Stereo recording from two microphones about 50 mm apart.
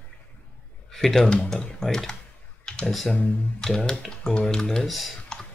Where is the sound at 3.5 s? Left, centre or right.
Centre.